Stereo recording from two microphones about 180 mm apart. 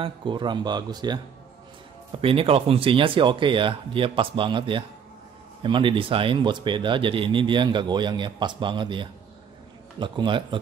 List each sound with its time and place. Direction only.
0.0 s speech: 25° right (ahead or behind)
2.2 s speech: 30° right (ahead or behind)